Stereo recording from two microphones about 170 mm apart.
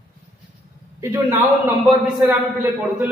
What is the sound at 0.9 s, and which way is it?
A man's voice, 15° right (ahead or behind).